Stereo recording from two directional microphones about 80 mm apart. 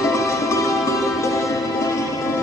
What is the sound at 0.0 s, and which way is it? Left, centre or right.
Music, left.